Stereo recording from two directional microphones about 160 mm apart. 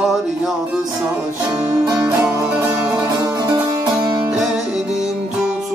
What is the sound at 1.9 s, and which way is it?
Music, 15° right (ahead or behind).